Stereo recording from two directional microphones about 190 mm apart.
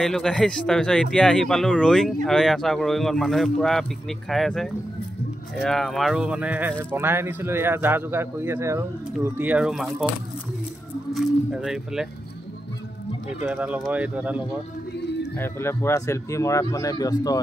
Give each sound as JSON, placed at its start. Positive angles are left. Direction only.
{"t": 0.0, "sound": "speech", "side_deg": 5}
{"t": 11.5, "sound": "speech", "side_deg": -5}
{"t": 13.3, "sound": "speech", "side_deg": -10}
{"t": 15.3, "sound": "speech", "side_deg": 10}